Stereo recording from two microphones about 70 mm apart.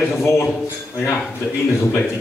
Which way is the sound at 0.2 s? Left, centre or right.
Left.